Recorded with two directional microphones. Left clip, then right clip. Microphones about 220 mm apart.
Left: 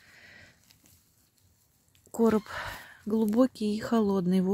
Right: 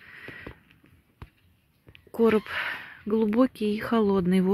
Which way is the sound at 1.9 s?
25° left (ahead or behind).